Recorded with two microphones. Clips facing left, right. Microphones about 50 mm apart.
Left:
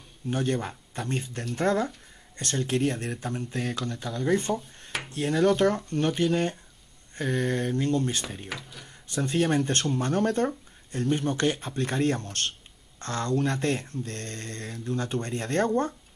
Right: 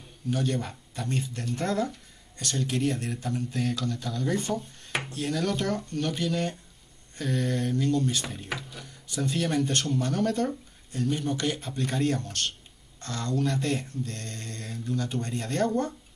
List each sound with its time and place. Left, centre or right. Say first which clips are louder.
0.3 s speech: left 1 dB; left
4.5 s speech: left 1 dB; centre
5.1 s speech: left 7 dB; left
8.5 s a sound: right 2 dB; centre
8.8 s speech: left 2 dB; left